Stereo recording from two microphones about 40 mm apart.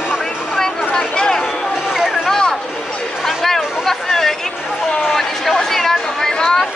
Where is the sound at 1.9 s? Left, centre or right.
Centre.